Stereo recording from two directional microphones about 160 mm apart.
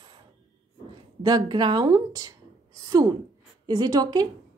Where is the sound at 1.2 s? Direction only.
25° right (ahead or behind).